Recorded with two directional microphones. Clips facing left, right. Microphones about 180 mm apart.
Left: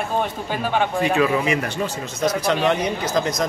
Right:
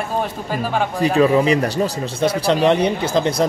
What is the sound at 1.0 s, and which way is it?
Speech, 35° right (ahead or behind).